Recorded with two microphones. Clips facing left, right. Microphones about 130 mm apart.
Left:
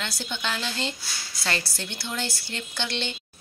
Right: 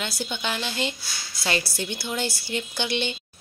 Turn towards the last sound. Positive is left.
turn(degrees=-15)  # may be behind; listen again after turning